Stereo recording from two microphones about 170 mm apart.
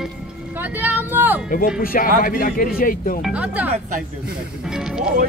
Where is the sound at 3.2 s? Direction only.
5° right (ahead or behind).